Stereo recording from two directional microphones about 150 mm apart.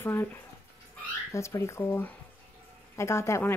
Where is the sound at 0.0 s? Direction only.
15° left (ahead or behind).